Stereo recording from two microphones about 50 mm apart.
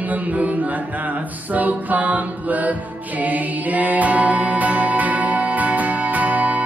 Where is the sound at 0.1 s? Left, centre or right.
Right.